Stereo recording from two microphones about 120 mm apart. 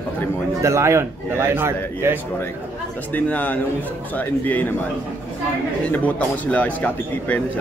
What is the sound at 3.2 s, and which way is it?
A man's voice, 15° left (ahead or behind).